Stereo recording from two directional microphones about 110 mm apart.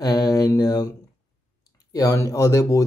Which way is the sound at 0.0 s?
35° left (ahead or behind).